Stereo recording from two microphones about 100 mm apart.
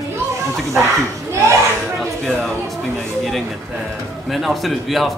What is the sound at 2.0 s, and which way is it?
Speech, 5° left (ahead or behind).